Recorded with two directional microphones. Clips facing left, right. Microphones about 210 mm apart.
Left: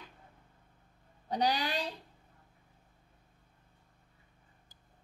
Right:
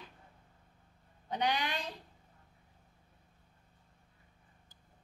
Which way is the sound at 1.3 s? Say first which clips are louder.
Left 3 dB; 35° left (ahead or behind).